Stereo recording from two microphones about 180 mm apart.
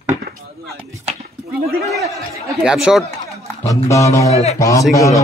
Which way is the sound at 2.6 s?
5° right (ahead or behind).